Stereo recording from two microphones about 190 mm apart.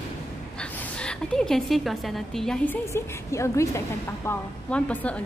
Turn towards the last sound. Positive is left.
turn(degrees=5)  # may be behind; listen again after turning